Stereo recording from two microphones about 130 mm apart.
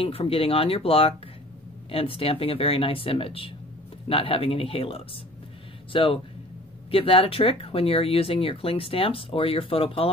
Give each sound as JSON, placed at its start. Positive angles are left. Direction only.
{"t": 0.0, "sound": "speech", "side_deg": 45}